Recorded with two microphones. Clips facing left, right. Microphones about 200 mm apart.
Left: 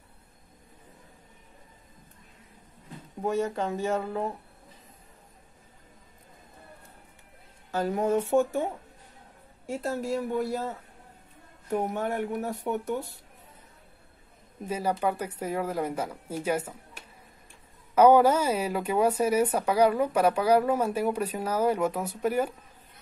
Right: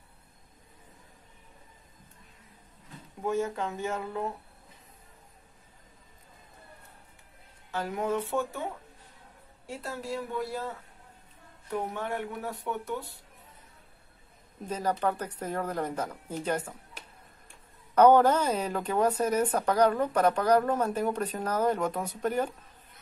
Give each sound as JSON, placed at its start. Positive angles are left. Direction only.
{"t": 3.2, "sound": "speech", "side_deg": 35}
{"t": 7.7, "sound": "speech", "side_deg": 40}
{"t": 9.7, "sound": "speech", "side_deg": 45}
{"t": 11.7, "sound": "speech", "side_deg": 45}
{"t": 14.7, "sound": "speech", "side_deg": 10}
{"t": 17.9, "sound": "speech", "side_deg": 10}